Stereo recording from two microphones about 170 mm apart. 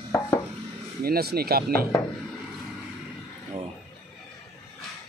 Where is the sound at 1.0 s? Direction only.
65° right (ahead or behind).